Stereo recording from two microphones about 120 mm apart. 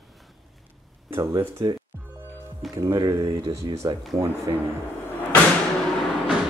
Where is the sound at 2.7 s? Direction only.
30° right (ahead or behind).